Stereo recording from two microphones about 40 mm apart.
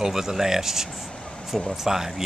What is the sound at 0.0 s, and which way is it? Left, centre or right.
Speech, centre.